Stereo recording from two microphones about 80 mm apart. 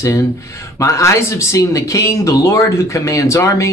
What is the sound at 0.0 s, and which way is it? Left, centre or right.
Speech, left.